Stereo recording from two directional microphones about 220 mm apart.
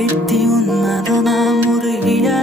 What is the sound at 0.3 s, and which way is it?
Music, centre (ahead or behind).